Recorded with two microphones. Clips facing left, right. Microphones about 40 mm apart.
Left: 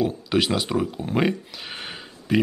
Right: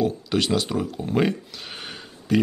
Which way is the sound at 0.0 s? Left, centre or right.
Centre.